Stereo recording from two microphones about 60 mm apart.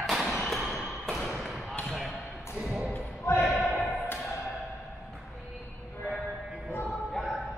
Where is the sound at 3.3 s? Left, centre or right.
Left.